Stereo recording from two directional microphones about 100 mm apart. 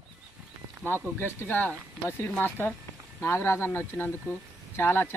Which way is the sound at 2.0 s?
25° left (ahead or behind).